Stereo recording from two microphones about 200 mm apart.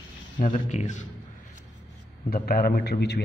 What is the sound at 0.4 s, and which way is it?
Speech, 35° left (ahead or behind).